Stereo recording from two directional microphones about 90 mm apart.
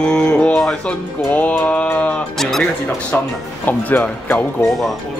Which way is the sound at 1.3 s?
15° left (ahead or behind).